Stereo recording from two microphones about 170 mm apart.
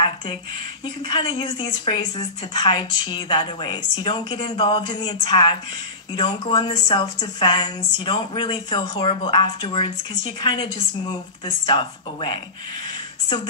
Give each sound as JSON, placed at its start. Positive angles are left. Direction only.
{"t": 1.0, "sound": "speech", "side_deg": 25}